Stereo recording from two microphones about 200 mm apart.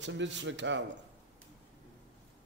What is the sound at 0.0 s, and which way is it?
Speech, 65° right (ahead or behind).